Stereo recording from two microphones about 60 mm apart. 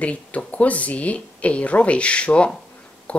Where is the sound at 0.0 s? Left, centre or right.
Left.